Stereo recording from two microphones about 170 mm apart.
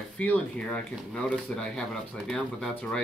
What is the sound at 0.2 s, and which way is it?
Speech, 10° left (ahead or behind).